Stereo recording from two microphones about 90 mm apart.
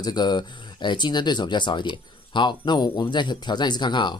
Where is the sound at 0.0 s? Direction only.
50° left (ahead or behind).